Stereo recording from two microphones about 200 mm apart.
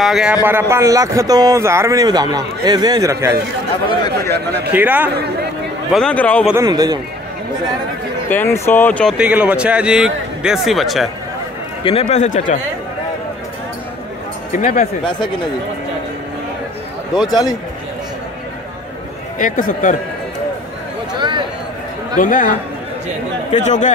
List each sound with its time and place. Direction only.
0.0 s a man's voice: centre (ahead or behind)
4.7 s speech: 10° right (ahead or behind)
5.9 s speech: 5° left (ahead or behind)
6.6 s a man's voice: 20° right (ahead or behind)
8.3 s speech: 10° left (ahead or behind)
9.1 s speech: 5° right (ahead or behind)
11.8 s a man's voice: 30° left (ahead or behind)
14.5 s a man's voice: 40° left (ahead or behind)
17.3 s a man's voice: 20° left (ahead or behind)
19.3 s a man's voice: 40° left (ahead or behind)
21.2 s a sound: 25° right (ahead or behind)
22.1 s a man's voice: 40° left (ahead or behind)
23.5 s a man's voice: 35° left (ahead or behind)